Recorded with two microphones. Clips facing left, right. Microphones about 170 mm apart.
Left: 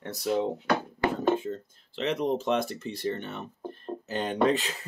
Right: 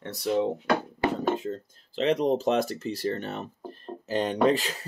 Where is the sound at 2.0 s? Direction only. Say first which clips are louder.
Right 4 dB; 90° right.